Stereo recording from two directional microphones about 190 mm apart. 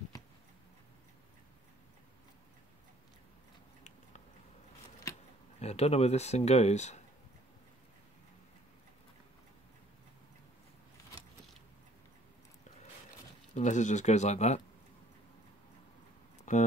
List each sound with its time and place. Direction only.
5.6 s speech: 35° left (ahead or behind)
13.6 s speech: 40° left (ahead or behind)
16.5 s speech: 40° left (ahead or behind)